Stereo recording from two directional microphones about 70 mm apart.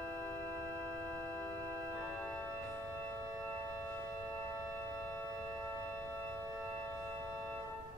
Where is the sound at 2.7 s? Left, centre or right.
Left.